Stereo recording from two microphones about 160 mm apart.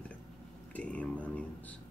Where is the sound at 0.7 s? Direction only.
10° left (ahead or behind).